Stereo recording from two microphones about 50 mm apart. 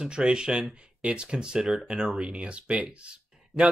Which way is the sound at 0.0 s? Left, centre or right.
Centre.